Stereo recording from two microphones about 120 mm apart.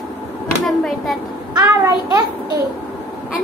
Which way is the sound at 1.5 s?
30° right (ahead or behind).